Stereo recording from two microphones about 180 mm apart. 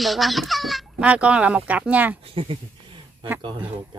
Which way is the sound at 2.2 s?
30° right (ahead or behind).